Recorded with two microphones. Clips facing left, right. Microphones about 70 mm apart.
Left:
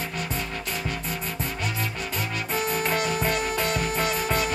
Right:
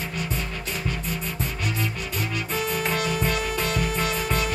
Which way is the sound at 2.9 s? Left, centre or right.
Left.